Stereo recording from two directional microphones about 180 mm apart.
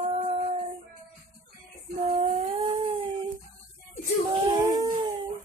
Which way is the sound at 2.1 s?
35° right (ahead or behind).